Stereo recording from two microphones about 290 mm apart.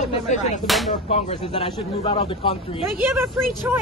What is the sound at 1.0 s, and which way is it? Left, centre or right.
Speech, left.